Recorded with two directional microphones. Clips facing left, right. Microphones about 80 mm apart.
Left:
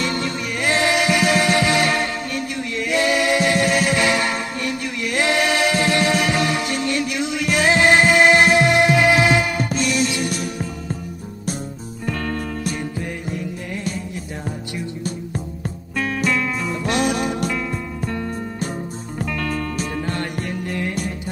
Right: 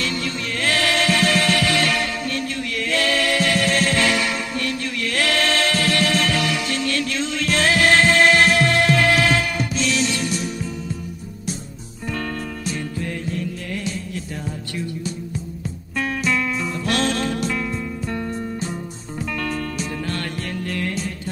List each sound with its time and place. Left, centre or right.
0.0 s music: left
10.3 s music: left
13.0 s music: centre
15.0 s music: left
16.8 s music: centre
20.1 s music: centre